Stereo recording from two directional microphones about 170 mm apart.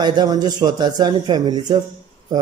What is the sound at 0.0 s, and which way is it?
A man's voice, 25° right (ahead or behind).